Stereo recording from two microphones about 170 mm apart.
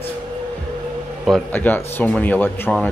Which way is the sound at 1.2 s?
5° left (ahead or behind).